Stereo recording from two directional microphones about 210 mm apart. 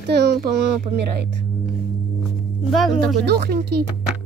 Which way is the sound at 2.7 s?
Centre (ahead or behind).